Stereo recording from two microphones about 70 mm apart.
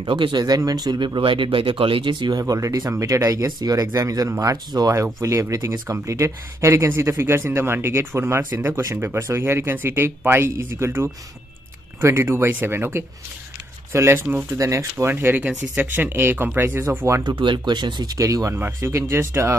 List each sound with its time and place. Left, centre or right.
0.0 s speech: right
0.6 s speech: right
3.5 s speech: right
5.0 s speech: right
15.1 s speech: right
17.2 s speech: right
18.1 s speech: right